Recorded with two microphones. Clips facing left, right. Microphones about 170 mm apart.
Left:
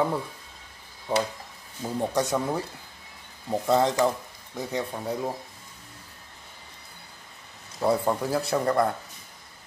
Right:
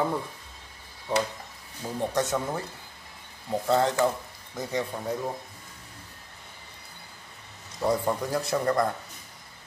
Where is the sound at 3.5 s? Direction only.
15° left (ahead or behind).